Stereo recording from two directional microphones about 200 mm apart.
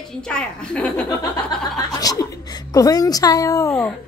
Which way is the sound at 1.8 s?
20° left (ahead or behind).